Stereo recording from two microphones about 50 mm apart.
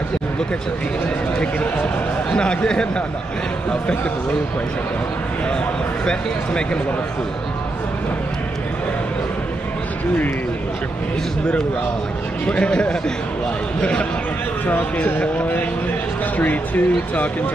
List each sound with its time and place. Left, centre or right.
2.3 s speech: centre
6.0 s speech: centre
12.4 s speech: left
16.3 s speech: left